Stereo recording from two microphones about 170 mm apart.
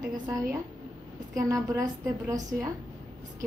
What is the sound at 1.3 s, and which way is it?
A woman's voice, 20° right (ahead or behind).